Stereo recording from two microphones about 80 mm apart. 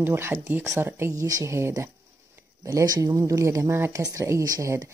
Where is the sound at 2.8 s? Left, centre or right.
Right.